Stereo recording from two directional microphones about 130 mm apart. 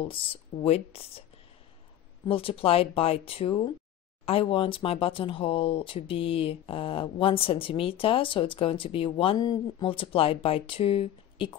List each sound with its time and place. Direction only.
0.0 s speech: 45° left (ahead or behind)
2.2 s speech: 45° left (ahead or behind)